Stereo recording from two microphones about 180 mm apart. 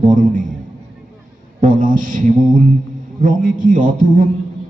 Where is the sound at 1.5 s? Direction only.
50° right (ahead or behind).